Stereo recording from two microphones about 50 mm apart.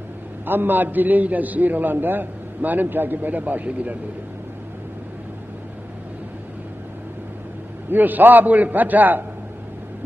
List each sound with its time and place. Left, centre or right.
0.5 s a man's voice: right
7.9 s a man's voice: right